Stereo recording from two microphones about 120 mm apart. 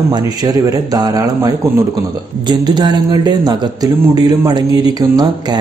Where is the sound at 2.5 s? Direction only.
40° right (ahead or behind).